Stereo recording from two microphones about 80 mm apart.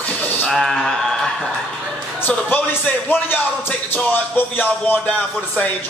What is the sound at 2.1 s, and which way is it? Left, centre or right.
Speech, left.